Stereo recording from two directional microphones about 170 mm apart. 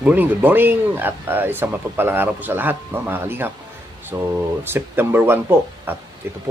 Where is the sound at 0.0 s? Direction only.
10° right (ahead or behind).